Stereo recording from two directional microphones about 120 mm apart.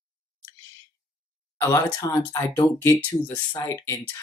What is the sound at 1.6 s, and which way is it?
Speech, 25° left (ahead or behind).